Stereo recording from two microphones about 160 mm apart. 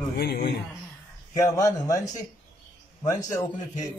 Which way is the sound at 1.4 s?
20° left (ahead or behind).